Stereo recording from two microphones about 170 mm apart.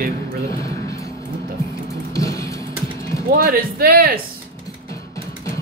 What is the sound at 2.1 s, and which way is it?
Music, 20° left (ahead or behind).